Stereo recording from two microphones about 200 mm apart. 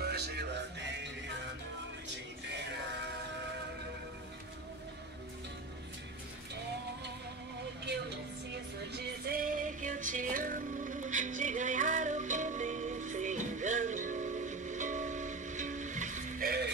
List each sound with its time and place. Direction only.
0.0 s music: 55° right (ahead or behind)
7.8 s music: 55° right (ahead or behind)